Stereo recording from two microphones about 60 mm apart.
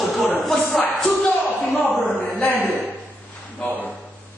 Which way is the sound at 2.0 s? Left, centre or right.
Left.